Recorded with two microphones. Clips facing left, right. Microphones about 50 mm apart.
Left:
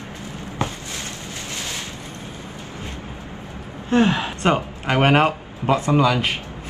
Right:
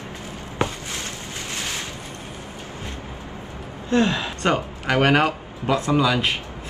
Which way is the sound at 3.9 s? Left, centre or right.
Left.